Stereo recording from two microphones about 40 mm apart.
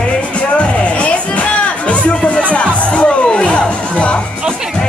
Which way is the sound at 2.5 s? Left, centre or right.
Left.